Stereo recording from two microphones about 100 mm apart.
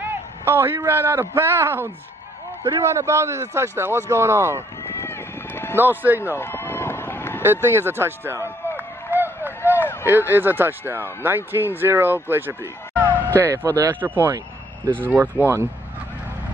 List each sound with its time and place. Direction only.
0.0 s a sound: 25° right (ahead or behind)
0.8 s speech: 20° right (ahead or behind)
4.8 s run: 25° left (ahead or behind)
5.8 s speech: 20° right (ahead or behind)
6.3 s run: 25° left (ahead or behind)
7.6 s a sound: 25° right (ahead or behind)
10.0 s speech: 20° right (ahead or behind)